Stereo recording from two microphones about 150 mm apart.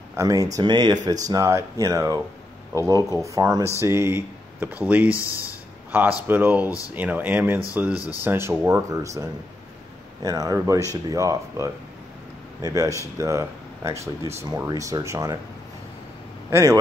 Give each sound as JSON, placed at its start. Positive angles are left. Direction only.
{"t": 0.1, "sound": "speech", "side_deg": -25}
{"t": 5.1, "sound": "speech", "side_deg": 20}
{"t": 5.9, "sound": "speech", "side_deg": -10}
{"t": 7.9, "sound": "speech", "side_deg": 25}
{"t": 8.2, "sound": "speech", "side_deg": -15}
{"t": 10.2, "sound": "speech", "side_deg": -25}
{"t": 16.4, "sound": "a man's voice", "side_deg": -20}